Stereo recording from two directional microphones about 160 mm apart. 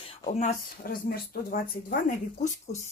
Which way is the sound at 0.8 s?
65° left (ahead or behind).